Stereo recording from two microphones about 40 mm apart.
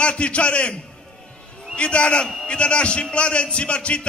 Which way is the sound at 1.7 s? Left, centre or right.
Left.